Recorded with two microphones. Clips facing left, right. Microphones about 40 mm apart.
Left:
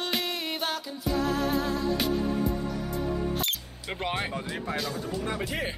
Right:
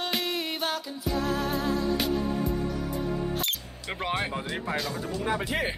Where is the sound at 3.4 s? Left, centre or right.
Centre.